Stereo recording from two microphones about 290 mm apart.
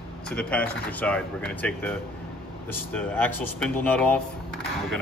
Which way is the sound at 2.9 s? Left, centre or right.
Centre.